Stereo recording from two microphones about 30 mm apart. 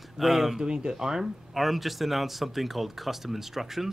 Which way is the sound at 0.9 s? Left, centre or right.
Centre.